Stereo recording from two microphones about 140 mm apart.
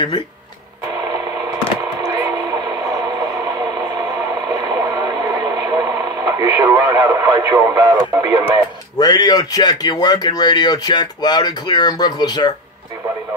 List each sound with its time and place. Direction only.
2.0 s radio: 30° right (ahead or behind)
8.9 s a man's voice: 25° left (ahead or behind)